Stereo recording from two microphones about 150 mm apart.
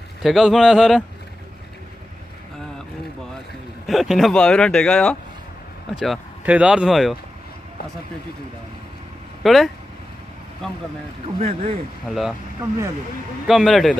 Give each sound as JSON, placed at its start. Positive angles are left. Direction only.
{"t": 0.2, "sound": "speech", "side_deg": 0}
{"t": 3.8, "sound": "speech", "side_deg": 0}
{"t": 5.9, "sound": "speech", "side_deg": -5}
{"t": 9.4, "sound": "speech", "side_deg": 0}
{"t": 11.3, "sound": "speech", "side_deg": -50}
{"t": 12.1, "sound": "speech", "side_deg": 0}
{"t": 13.5, "sound": "speech", "side_deg": 0}